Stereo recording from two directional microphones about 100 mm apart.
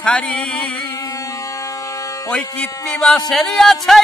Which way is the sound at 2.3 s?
10° left (ahead or behind).